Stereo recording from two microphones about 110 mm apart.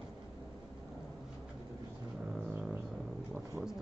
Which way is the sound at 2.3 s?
10° right (ahead or behind).